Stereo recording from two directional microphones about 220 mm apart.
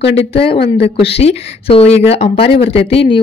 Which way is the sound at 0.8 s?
25° left (ahead or behind).